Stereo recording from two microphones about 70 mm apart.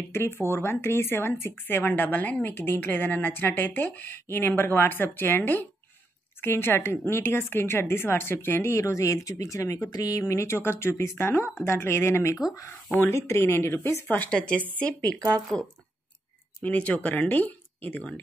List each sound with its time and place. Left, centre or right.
0.1 s a woman's voice: left
8.7 s speech: left
9.8 s a woman's voice: left
14.0 s a woman's voice: left
15.1 s speech: right
16.6 s a woman's voice: left